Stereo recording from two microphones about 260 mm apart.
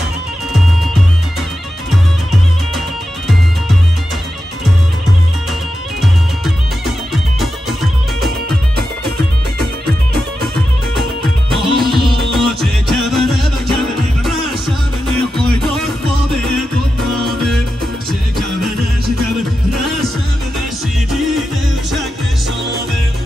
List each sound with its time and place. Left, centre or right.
7.3 s music: centre
9.6 s music: right
11.5 s music: centre
17.2 s music: centre
19.7 s music: centre